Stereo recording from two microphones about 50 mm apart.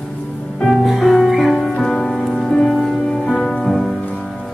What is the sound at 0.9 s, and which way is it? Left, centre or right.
Music, centre.